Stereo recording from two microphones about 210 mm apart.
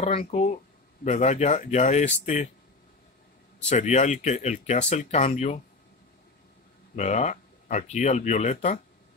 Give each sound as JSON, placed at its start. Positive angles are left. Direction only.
{"t": 0.0, "sound": "speech", "side_deg": 30}
{"t": 3.6, "sound": "speech", "side_deg": 30}
{"t": 7.0, "sound": "speech", "side_deg": 35}